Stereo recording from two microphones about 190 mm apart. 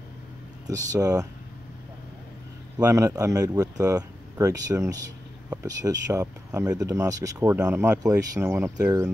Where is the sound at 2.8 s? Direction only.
15° right (ahead or behind).